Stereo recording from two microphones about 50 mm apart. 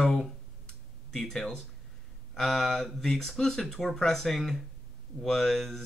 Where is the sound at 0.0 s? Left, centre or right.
Centre.